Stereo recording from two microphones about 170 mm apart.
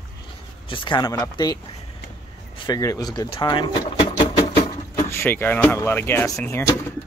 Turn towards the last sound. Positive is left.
turn(degrees=15)  # may be behind; listen again after turning